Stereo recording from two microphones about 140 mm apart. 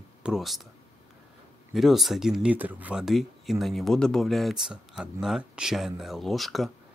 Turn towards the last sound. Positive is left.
turn(degrees=0)  # may be behind; listen again after turning